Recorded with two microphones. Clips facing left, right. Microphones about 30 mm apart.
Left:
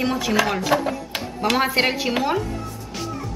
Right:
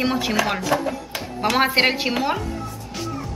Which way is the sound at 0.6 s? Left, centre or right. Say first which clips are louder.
Left 1 dB; centre.